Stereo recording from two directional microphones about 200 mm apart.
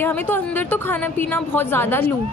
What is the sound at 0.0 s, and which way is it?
A woman's voice, 10° left (ahead or behind).